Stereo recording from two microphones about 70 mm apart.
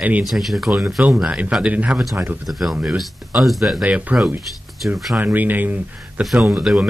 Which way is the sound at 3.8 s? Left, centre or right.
Right.